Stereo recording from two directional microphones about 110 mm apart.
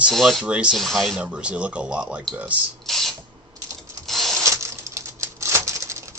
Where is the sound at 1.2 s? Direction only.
10° right (ahead or behind).